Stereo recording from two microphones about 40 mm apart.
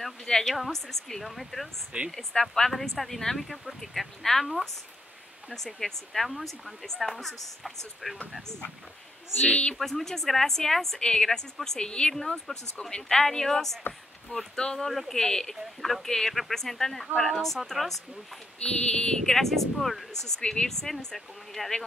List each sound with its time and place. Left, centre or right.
0.2 s speech: centre
0.5 s speech: centre
1.9 s speech: right
2.5 s speech: centre
9.5 s speech: left
9.8 s speech: centre
11.0 s speech: left
11.2 s speech: centre
11.8 s speech: left
12.1 s speech: centre
14.9 s speech: centre
15.1 s speech: centre
18.6 s speech: left
19.2 s speech: centre